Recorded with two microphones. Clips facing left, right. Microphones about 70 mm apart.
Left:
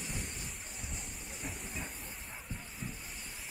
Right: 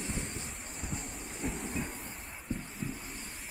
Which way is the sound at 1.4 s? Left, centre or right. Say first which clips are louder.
Right 7 dB; centre.